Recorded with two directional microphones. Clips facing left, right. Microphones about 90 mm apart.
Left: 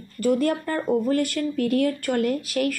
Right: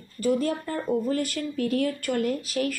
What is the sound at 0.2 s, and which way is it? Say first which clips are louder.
Speech: left 3 dB; 55° left (ahead or behind).